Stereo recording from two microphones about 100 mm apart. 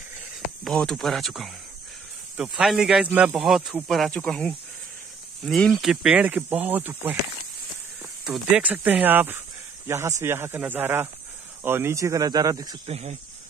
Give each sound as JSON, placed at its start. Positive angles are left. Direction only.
{"t": 0.7, "sound": "speech", "side_deg": 5}
{"t": 3.1, "sound": "speech", "side_deg": -15}
{"t": 3.3, "sound": "speech", "side_deg": -5}
{"t": 4.1, "sound": "speech", "side_deg": 10}
{"t": 5.4, "sound": "speech", "side_deg": 0}
{"t": 6.2, "sound": "speech", "side_deg": -15}
{"t": 8.5, "sound": "speech", "side_deg": -15}
{"t": 12.8, "sound": "speech", "side_deg": -90}